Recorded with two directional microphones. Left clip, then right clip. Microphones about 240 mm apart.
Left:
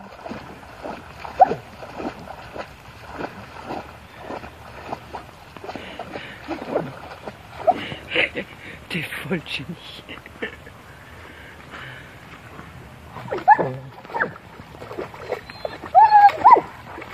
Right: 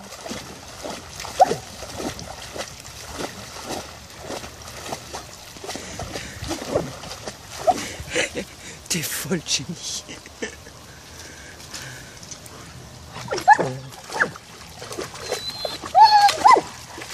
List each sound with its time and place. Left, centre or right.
0.8 s a sound: centre
5.7 s boat: centre
13.3 s dog: centre
14.9 s rodents: centre
16.3 s dog: centre